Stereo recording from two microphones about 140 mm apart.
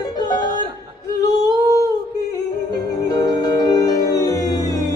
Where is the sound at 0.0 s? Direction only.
30° left (ahead or behind).